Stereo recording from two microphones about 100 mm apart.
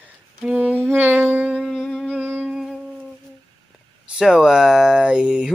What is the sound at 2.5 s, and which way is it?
Music, 5° right (ahead or behind).